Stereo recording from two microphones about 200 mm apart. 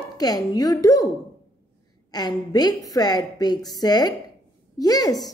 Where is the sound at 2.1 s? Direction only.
20° left (ahead or behind).